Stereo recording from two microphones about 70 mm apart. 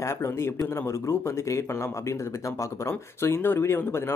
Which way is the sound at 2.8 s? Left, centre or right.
Left.